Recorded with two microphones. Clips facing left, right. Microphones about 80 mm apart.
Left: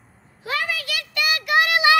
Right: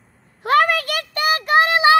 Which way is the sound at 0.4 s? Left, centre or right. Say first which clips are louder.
Right 11 dB; right.